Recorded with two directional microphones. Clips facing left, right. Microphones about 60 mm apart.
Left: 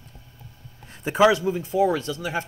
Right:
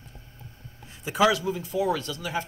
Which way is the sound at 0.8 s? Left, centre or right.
Left.